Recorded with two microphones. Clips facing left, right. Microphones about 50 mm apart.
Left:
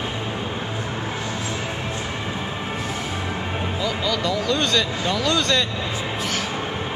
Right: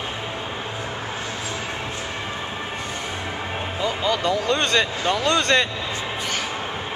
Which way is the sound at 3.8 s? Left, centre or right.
Right.